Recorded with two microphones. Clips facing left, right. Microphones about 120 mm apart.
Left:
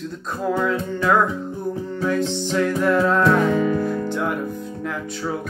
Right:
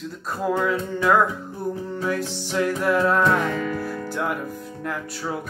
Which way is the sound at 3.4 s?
20° left (ahead or behind).